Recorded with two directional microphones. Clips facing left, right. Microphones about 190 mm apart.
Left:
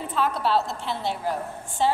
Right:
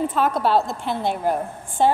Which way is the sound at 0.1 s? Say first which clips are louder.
Right 4 dB; 50° right (ahead or behind).